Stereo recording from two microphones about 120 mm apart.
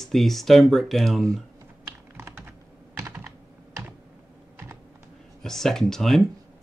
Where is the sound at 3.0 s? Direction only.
25° right (ahead or behind).